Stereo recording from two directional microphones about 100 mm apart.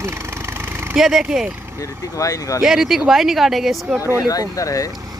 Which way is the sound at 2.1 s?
35° left (ahead or behind).